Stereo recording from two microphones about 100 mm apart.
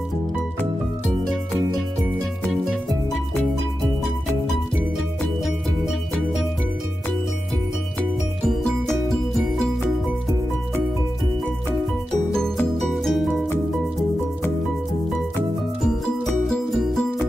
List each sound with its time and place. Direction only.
5.4 s music: centre (ahead or behind)
8.5 s music: 5° left (ahead or behind)
12.3 s music: 5° left (ahead or behind)
15.8 s music: centre (ahead or behind)